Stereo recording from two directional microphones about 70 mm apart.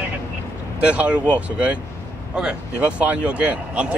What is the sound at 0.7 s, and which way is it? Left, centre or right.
Speech, centre.